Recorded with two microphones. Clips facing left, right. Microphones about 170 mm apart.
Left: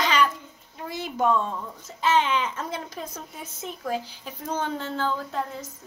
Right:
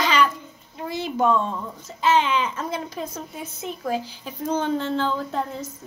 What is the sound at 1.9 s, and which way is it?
A child's voice, 15° right (ahead or behind).